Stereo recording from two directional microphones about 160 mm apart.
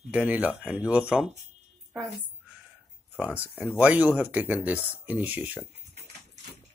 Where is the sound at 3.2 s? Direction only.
10° right (ahead or behind).